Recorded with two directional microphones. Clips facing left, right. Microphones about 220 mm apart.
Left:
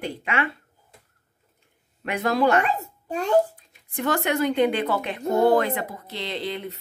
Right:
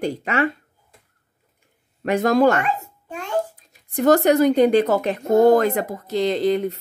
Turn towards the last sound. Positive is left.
turn(degrees=-45)  # may be behind; listen again after turning